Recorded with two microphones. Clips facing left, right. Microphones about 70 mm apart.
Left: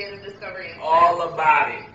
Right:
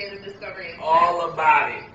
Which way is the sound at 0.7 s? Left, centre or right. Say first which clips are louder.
Left 2 dB; centre.